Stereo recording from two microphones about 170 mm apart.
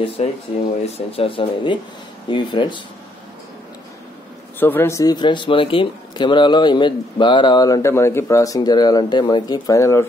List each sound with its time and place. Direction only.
0.2 s speech: 40° left (ahead or behind)
4.6 s speech: 10° left (ahead or behind)